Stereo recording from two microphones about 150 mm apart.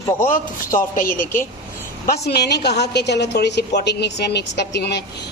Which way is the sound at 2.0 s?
90° left.